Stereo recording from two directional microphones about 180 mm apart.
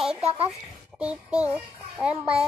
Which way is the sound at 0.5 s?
5° right (ahead or behind).